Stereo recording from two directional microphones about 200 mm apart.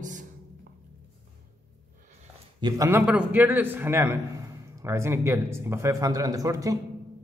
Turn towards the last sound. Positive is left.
turn(degrees=-15)  # may be behind; listen again after turning